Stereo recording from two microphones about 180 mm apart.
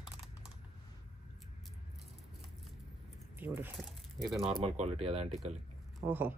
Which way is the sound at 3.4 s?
10° right (ahead or behind).